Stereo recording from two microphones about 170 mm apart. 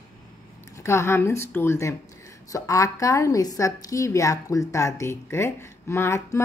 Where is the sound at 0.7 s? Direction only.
15° left (ahead or behind).